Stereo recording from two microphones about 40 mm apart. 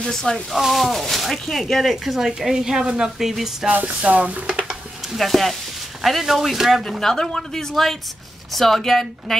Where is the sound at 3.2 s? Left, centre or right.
Centre.